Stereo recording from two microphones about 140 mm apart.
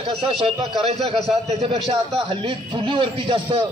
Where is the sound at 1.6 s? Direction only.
50° right (ahead or behind).